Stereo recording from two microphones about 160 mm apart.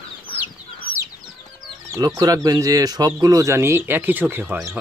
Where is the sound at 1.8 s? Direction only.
25° right (ahead or behind).